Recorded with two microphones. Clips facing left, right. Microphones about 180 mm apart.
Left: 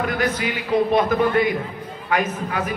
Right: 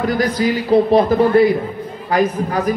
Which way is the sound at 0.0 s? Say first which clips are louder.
Right 6 dB; 35° right (ahead or behind).